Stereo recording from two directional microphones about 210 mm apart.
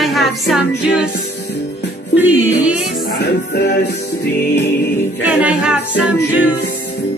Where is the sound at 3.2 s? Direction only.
50° left (ahead or behind).